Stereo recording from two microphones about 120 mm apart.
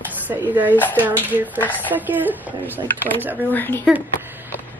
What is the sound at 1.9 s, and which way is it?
Speech, 15° right (ahead or behind).